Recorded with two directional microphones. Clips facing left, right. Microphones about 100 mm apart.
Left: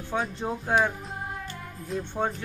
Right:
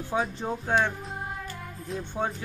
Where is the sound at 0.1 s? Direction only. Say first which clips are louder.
Even; centre (ahead or behind).